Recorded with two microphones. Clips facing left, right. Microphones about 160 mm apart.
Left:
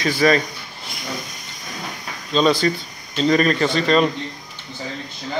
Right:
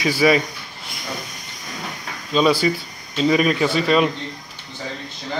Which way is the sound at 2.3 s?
10° right (ahead or behind).